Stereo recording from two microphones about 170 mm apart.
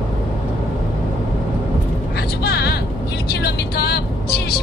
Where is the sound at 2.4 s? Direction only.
70° left (ahead or behind).